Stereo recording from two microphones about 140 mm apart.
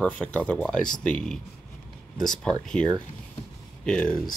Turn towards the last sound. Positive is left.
turn(degrees=5)  # may be behind; listen again after turning